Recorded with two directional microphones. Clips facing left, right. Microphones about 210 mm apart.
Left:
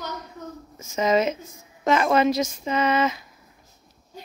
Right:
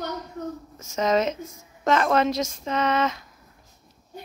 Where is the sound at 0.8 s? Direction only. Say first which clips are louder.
Left 1 dB; 5° left (ahead or behind).